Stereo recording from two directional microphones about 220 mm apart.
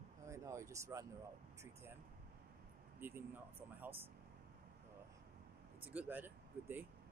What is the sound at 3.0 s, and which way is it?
Speech, 10° right (ahead or behind).